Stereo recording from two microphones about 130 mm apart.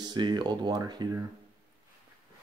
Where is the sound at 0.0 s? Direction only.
35° right (ahead or behind).